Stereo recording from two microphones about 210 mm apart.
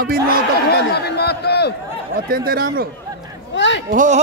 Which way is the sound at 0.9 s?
50° left (ahead or behind).